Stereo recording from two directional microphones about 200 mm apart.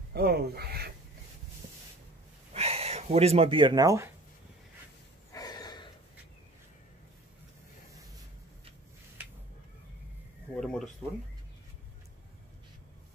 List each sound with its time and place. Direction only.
0.1 s speech: 50° right (ahead or behind)
2.5 s speech: 30° right (ahead or behind)
5.3 s snort: 20° left (ahead or behind)
10.5 s a sound: 5° left (ahead or behind)